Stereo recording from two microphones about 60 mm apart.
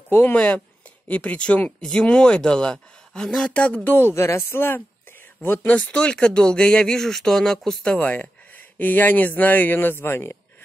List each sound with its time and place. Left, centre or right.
0.1 s speech: left
1.0 s speech: left
3.9 s speech: left
5.8 s speech: centre
8.0 s speech: left